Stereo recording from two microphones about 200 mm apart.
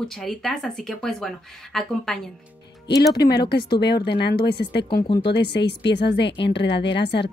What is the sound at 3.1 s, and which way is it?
A woman's voice, 55° left (ahead or behind).